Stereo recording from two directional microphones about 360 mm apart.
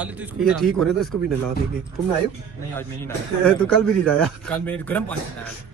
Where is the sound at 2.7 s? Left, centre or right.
Centre.